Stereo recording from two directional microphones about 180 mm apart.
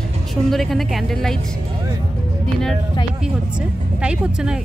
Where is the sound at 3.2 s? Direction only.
5° right (ahead or behind).